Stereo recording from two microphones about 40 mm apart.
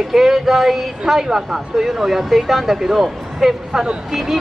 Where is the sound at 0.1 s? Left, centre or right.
Centre.